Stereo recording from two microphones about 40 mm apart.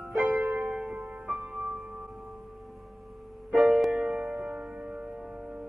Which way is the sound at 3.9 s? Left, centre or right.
Right.